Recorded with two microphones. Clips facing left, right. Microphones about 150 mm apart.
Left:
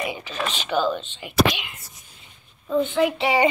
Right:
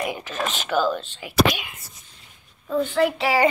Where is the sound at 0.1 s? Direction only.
45° right (ahead or behind).